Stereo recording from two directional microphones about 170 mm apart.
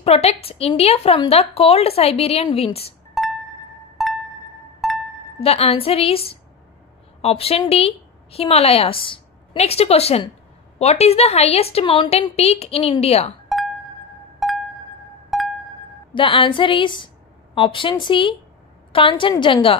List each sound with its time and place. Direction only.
0.0 s a woman's voice: 35° left (ahead or behind)
3.2 s music: centre (ahead or behind)
5.4 s a woman's voice: 35° left (ahead or behind)
14.4 s music: centre (ahead or behind)
16.2 s a woman's voice: 30° left (ahead or behind)